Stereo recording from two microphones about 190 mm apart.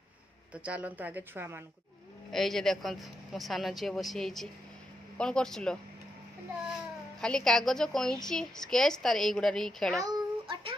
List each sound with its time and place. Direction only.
0.7 s a woman's voice: 10° right (ahead or behind)
2.3 s a woman's voice: centre (ahead or behind)
7.2 s a woman's voice: 5° left (ahead or behind)
9.9 s a sound: 20° right (ahead or behind)